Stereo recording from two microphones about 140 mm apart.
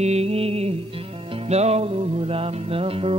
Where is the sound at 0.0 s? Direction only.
50° right (ahead or behind).